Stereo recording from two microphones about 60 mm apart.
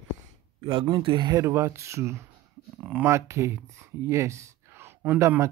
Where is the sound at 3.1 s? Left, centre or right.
Right.